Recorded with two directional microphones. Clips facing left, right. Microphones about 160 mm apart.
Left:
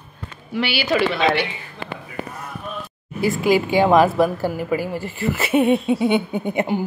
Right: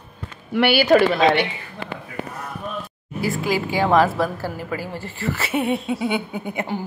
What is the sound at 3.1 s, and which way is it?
A woman's voice, 20° left (ahead or behind).